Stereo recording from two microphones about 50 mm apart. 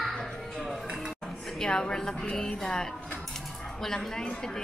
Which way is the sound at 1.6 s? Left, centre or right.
Centre.